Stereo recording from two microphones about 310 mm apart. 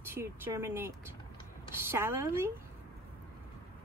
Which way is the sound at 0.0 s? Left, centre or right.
Centre.